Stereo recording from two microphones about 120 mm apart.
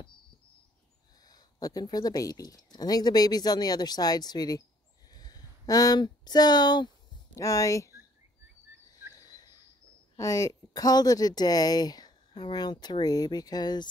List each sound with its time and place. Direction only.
1.2 s speech: 30° left (ahead or behind)
9.1 s cricket: 35° left (ahead or behind)
10.1 s speech: 25° left (ahead or behind)